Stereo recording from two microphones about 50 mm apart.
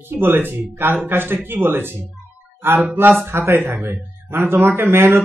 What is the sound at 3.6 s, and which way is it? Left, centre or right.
Speech, right.